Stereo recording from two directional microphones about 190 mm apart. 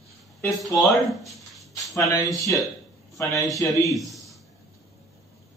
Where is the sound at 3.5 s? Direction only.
15° left (ahead or behind).